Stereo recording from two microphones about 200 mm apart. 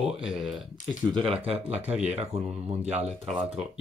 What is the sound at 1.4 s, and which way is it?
Speech, 30° right (ahead or behind).